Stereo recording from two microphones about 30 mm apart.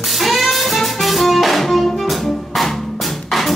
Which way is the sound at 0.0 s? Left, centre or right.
Centre.